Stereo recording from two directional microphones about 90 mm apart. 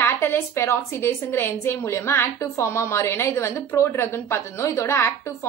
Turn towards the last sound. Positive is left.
turn(degrees=30)  # may be behind; listen again after turning